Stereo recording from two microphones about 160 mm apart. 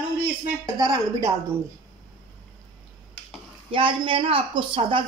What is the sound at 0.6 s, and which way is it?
Speech, 25° right (ahead or behind).